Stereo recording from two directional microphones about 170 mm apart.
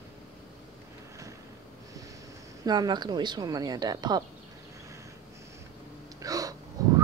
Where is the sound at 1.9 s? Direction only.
20° right (ahead or behind).